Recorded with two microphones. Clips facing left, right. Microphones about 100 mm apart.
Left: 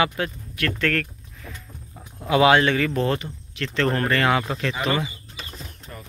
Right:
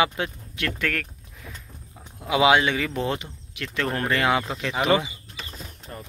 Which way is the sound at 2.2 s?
10° right (ahead or behind).